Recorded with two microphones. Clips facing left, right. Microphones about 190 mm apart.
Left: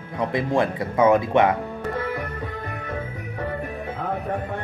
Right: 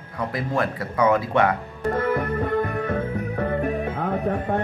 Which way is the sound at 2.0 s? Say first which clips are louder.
Right 7 dB; 50° right (ahead or behind).